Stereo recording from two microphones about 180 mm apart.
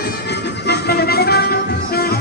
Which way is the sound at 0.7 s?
60° left (ahead or behind).